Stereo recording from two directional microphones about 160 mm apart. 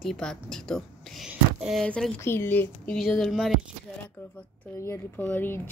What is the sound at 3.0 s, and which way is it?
Speech, centre (ahead or behind).